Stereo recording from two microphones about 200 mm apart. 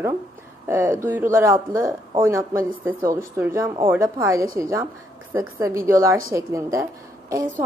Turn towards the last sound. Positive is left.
turn(degrees=-15)  # may be behind; listen again after turning